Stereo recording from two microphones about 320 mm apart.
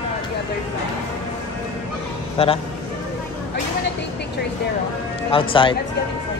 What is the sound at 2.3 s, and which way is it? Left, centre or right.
Speech, centre.